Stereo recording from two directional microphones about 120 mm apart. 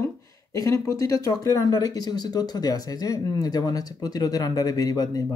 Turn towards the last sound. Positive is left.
turn(degrees=30)  # may be behind; listen again after turning